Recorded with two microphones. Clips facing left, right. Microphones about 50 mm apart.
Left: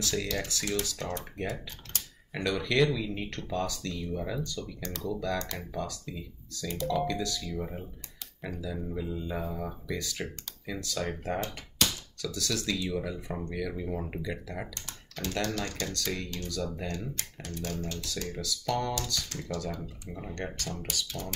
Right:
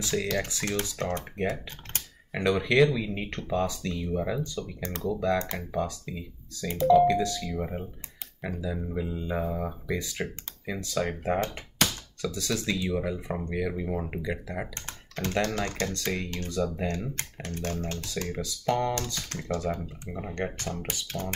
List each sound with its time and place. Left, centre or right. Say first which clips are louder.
0.0 s speech: right 3 dB; right
0.8 s speech: right 4 dB; right
1.5 s speech: right 3 dB; right
2.3 s speech: right 5 dB; right
14.7 s speech: right 3 dB; right
16.8 s speech: right 5 dB; right
18.4 s speech: right 4 dB; right
19.3 s speech: right 2 dB; right
20.1 s speech: right 5 dB; right